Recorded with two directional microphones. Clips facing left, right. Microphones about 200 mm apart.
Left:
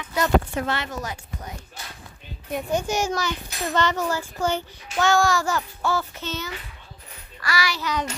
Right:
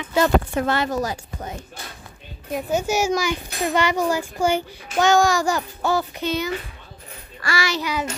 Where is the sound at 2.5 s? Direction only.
5° right (ahead or behind).